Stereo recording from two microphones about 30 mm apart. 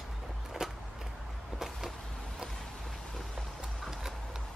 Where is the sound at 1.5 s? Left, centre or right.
Centre.